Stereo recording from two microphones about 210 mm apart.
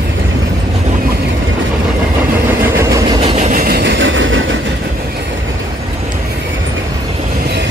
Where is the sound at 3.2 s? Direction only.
30° right (ahead or behind); by 4.6 s 65° right (ahead or behind).